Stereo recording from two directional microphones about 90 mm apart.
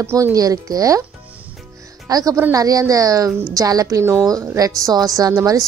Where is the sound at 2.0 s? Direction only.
40° right (ahead or behind).